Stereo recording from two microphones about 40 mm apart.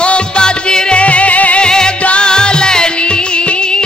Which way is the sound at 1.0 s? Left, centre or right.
Left.